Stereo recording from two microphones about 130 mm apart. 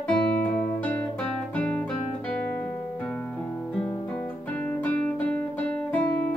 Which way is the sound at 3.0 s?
10° left (ahead or behind).